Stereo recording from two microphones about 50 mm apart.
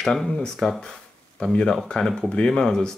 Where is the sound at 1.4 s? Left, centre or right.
Left.